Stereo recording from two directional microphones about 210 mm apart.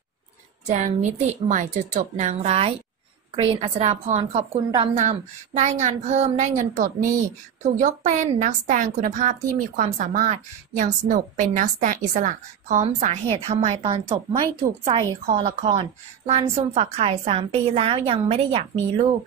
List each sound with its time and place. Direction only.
0.7 s a woman's voice: 35° right (ahead or behind)